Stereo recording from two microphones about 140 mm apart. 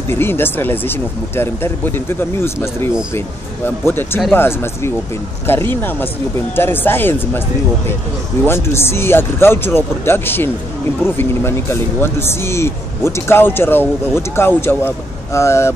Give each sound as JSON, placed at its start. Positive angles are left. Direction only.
{"t": 0.1, "sound": "speech", "side_deg": 15}
{"t": 8.5, "sound": "speech", "side_deg": 15}